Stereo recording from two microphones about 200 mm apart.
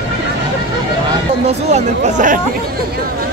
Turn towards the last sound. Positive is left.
turn(degrees=-40)  # may be behind; listen again after turning